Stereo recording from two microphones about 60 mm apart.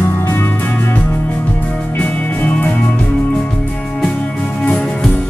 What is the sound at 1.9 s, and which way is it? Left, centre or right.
Music, left.